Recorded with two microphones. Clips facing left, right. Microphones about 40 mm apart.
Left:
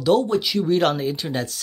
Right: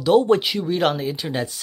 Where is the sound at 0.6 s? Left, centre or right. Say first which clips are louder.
Left 2 dB; centre.